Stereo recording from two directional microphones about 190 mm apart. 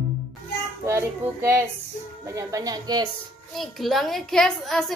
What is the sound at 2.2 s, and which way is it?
Speech, 15° right (ahead or behind).